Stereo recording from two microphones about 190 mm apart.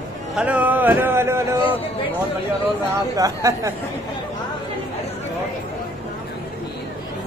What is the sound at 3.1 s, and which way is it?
Speech, 15° right (ahead or behind).